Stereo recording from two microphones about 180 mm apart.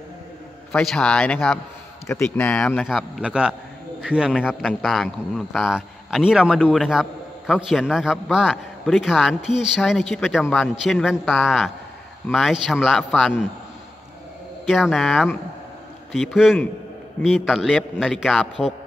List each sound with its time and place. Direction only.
0.7 s a man's voice: 5° left (ahead or behind)
14.7 s a man's voice: centre (ahead or behind)